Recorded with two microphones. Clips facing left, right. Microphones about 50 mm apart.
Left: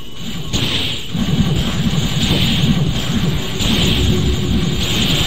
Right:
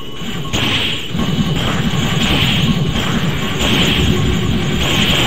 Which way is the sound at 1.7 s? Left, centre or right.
Right.